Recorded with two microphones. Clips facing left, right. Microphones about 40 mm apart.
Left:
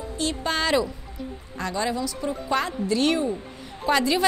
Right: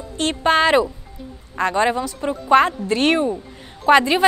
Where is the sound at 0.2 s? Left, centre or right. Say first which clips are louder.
Right 9 dB; right.